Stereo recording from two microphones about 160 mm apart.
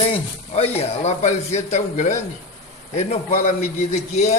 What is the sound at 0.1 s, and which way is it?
A man's voice, 40° left (ahead or behind).